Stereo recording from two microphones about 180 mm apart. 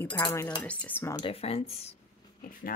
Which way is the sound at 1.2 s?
35° left (ahead or behind).